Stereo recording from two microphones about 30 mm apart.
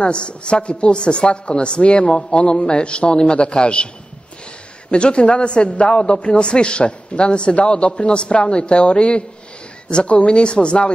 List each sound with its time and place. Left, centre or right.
0.0 s a man's voice: left
4.9 s a man's voice: left